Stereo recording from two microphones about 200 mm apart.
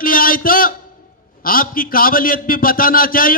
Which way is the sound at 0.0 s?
45° left (ahead or behind).